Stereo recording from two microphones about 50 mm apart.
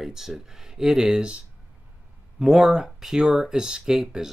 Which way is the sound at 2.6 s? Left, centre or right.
Centre.